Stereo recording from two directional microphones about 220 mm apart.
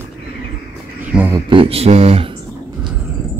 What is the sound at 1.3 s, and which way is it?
Speech, 20° right (ahead or behind).